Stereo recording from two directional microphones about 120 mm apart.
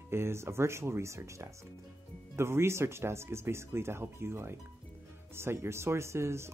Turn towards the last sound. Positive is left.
turn(degrees=-20)  # may be behind; listen again after turning